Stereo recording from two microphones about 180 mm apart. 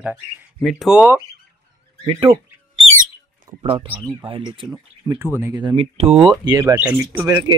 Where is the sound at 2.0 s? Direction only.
30° right (ahead or behind).